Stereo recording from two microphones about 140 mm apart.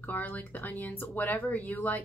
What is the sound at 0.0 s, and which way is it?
Speech, 10° left (ahead or behind).